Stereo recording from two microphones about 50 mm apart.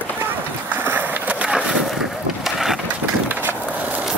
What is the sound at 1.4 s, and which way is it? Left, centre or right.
Vehicle, right.